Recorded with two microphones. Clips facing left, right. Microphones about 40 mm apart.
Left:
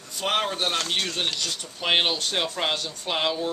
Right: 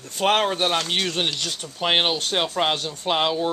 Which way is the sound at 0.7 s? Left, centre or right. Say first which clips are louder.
Right 3 dB; centre.